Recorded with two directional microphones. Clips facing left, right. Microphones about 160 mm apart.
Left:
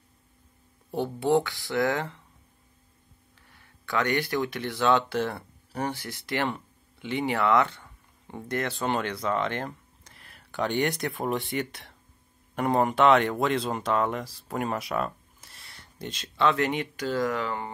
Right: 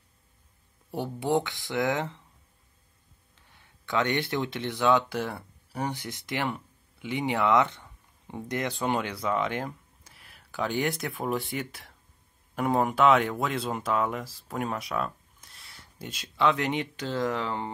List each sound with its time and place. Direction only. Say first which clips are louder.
0.9 s speech: left 3 dB; 10° right (ahead or behind)
3.3 s speech: left 1 dB; 20° right (ahead or behind)